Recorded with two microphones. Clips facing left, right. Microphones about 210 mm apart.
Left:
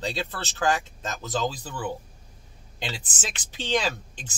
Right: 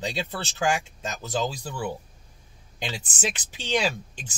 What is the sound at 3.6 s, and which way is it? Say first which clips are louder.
Speech: even; 10° right (ahead or behind).